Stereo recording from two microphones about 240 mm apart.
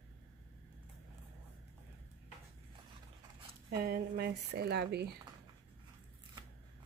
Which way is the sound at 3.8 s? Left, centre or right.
Right.